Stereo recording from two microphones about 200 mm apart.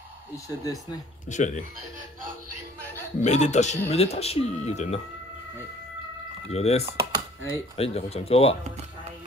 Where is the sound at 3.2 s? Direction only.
35° left (ahead or behind).